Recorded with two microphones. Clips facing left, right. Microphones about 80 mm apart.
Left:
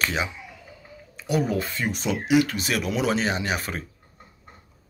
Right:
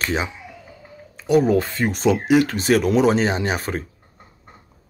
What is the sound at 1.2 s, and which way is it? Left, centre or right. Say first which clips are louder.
Speech: right 8 dB; right.